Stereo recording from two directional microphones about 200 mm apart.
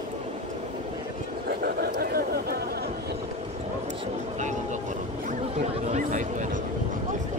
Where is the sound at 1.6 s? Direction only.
50° right (ahead or behind).